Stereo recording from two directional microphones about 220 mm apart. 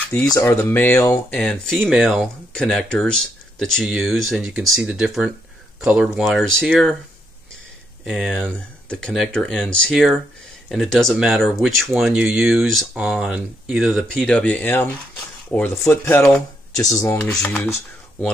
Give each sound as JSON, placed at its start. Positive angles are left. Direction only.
{"t": 0.1, "sound": "speech", "side_deg": 15}
{"t": 8.0, "sound": "speech", "side_deg": 0}